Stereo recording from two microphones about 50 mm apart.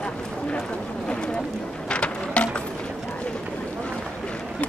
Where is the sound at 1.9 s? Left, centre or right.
Left.